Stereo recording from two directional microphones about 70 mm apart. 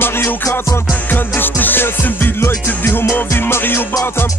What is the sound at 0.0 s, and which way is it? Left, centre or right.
Music, left.